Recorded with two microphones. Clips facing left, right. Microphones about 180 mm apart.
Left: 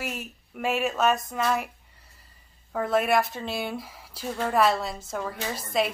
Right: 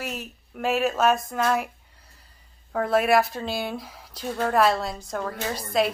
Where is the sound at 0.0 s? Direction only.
5° left (ahead or behind).